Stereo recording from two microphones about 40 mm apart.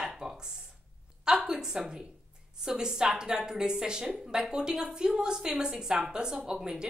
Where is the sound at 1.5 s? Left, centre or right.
Centre.